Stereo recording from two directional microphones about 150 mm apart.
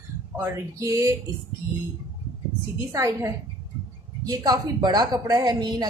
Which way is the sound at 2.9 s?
20° right (ahead or behind).